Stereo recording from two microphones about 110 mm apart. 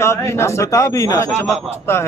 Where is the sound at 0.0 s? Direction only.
25° left (ahead or behind).